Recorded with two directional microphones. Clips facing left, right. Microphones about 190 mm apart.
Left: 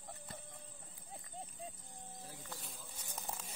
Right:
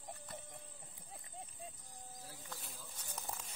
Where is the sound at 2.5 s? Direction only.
Centre (ahead or behind).